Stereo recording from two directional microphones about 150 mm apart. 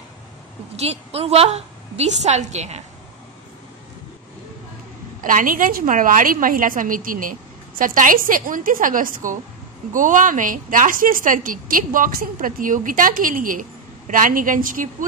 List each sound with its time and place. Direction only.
0.7 s a woman's voice: 45° right (ahead or behind)
5.2 s a woman's voice: 65° right (ahead or behind)